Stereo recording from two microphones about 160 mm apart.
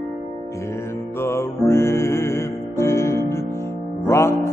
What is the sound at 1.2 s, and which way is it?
Music, 15° left (ahead or behind).